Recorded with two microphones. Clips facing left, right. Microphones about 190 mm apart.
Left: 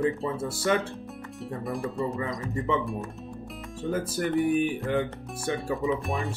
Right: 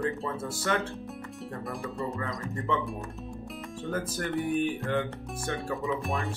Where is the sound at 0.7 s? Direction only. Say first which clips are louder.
Left 4 dB; 10° left (ahead or behind).